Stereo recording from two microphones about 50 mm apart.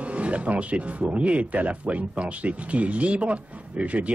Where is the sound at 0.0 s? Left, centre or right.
Right.